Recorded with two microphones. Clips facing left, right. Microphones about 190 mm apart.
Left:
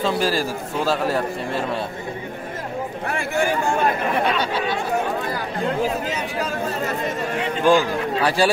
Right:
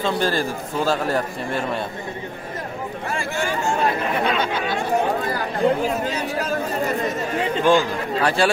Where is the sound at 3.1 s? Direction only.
60° left (ahead or behind).